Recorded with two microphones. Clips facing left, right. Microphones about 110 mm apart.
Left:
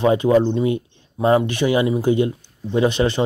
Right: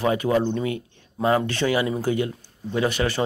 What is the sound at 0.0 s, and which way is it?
Speech, 25° left (ahead or behind).